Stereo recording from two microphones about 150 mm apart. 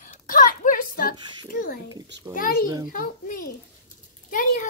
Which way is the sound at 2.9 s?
65° left (ahead or behind).